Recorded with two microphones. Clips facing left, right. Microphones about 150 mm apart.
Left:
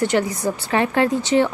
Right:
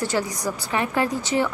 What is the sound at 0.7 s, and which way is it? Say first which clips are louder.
Speech: left 5 dB; 80° left.